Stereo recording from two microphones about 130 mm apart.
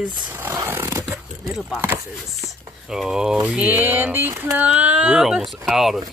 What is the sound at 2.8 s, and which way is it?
Speech, 5° right (ahead or behind).